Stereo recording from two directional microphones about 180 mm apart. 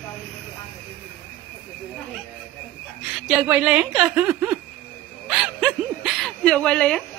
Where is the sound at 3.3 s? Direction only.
5° right (ahead or behind).